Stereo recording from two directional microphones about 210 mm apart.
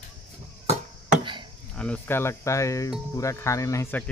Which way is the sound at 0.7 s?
25° right (ahead or behind).